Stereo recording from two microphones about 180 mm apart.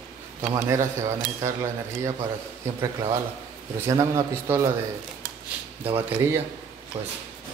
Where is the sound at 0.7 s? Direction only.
15° right (ahead or behind).